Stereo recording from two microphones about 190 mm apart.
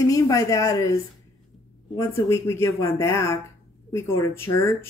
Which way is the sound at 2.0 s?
15° left (ahead or behind).